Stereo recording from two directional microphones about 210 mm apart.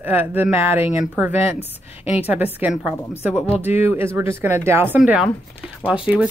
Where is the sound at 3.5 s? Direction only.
30° left (ahead or behind).